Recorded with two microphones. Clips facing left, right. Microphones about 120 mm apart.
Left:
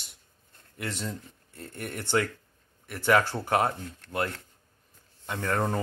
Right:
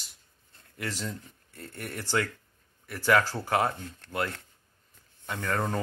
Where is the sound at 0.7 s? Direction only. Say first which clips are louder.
Left 1 dB; 20° left (ahead or behind).